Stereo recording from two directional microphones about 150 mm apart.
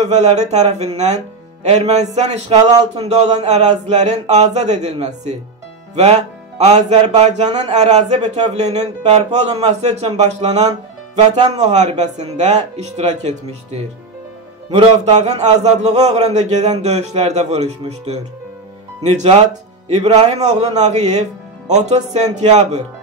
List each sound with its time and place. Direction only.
0.0 s speech: 50° right (ahead or behind)